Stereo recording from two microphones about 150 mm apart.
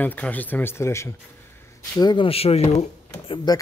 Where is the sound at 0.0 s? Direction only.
10° left (ahead or behind).